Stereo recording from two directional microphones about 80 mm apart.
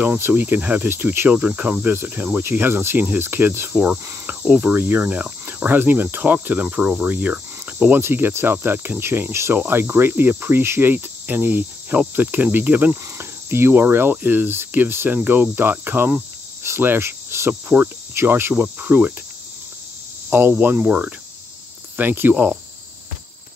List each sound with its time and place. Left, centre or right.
0.0 s cricket: right
20.2 s cricket: right
21.9 s speech: right
22.3 s cricket: centre